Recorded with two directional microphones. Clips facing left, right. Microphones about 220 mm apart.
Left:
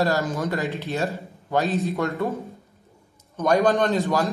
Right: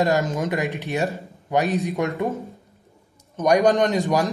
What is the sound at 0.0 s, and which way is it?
A man's voice, 20° right (ahead or behind).